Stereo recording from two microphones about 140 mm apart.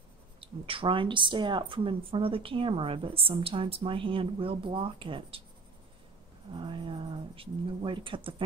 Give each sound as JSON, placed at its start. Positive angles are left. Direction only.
{"t": 0.4, "sound": "a woman's voice", "side_deg": -40}
{"t": 6.5, "sound": "a woman's voice", "side_deg": -35}